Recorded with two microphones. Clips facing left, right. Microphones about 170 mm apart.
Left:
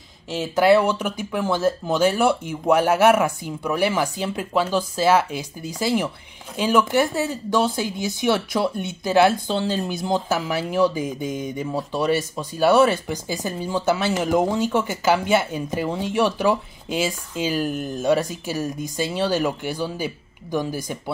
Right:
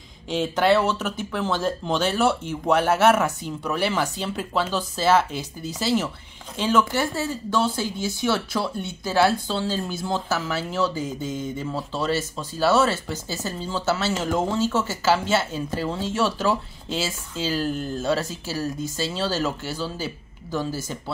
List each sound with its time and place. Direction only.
0.3 s speech: 5° left (ahead or behind)